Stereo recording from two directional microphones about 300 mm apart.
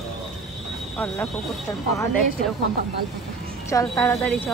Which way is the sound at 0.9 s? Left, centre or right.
Centre.